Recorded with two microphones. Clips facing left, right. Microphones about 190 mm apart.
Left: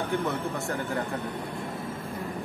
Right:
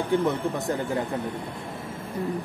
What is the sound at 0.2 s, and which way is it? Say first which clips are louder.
Speech: right 4 dB; 15° right (ahead or behind).